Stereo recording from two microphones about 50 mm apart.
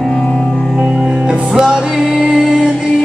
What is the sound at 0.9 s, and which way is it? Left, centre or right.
Music, centre.